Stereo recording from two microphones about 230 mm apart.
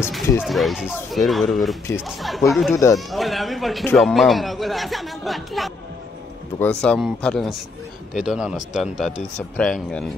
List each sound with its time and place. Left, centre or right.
0.0 s a man's voice: centre
2.7 s speech: centre
3.1 s a man's voice: centre